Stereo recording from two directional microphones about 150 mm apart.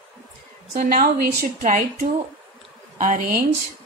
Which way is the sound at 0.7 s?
70° right (ahead or behind).